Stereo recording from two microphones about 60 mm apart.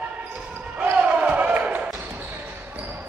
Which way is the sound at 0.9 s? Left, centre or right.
Right.